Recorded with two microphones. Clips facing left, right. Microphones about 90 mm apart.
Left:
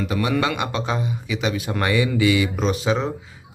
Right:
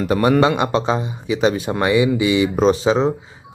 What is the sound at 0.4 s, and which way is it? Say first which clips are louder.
Speech: right 7 dB; 30° right (ahead or behind).